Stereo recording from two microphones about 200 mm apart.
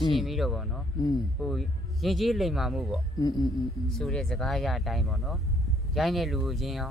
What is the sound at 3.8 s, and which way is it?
Speech, centre (ahead or behind).